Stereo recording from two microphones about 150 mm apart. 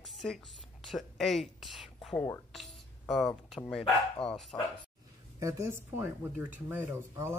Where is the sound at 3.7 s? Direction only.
5° left (ahead or behind).